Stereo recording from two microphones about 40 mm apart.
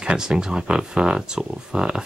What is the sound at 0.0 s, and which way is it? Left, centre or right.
Speech, centre.